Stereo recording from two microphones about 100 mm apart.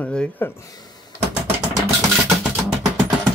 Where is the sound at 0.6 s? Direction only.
40° left (ahead or behind).